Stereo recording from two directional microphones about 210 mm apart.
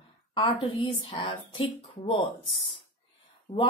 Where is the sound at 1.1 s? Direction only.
20° left (ahead or behind).